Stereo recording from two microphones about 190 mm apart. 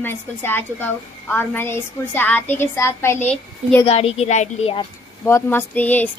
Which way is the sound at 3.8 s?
30° left (ahead or behind).